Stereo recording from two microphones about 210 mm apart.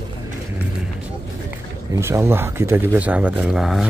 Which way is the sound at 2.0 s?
10° right (ahead or behind).